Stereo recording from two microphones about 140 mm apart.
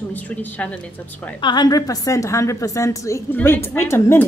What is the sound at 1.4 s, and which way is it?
A woman's voice, 30° left (ahead or behind).